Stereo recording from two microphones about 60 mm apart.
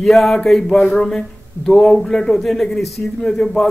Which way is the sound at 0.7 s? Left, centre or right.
Centre.